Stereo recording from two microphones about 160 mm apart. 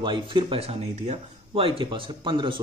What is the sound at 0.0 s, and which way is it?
Speech, 30° right (ahead or behind).